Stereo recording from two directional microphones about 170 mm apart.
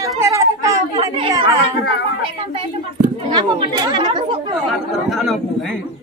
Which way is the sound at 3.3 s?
25° right (ahead or behind).